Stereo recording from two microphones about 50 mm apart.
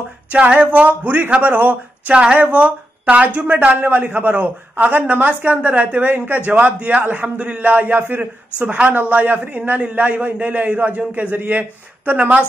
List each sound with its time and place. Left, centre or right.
0.3 s a sound: right
0.7 s a man's voice: right
5.9 s a man's voice: right
8.2 s a man's voice: right